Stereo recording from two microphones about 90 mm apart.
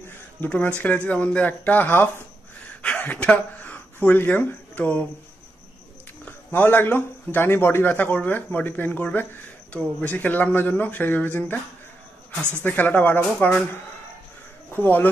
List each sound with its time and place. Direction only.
0.5 s speech: 15° left (ahead or behind)
6.2 s a man's voice: 20° left (ahead or behind)
12.4 s speech: 25° right (ahead or behind)
12.6 s a man's voice: 20° left (ahead or behind)
14.7 s speech: 25° left (ahead or behind)